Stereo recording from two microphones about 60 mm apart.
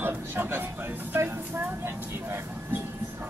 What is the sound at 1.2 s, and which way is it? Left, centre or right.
Vehicle, right.